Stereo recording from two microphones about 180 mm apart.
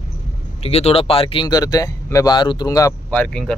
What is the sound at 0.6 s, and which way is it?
Speech, 35° left (ahead or behind).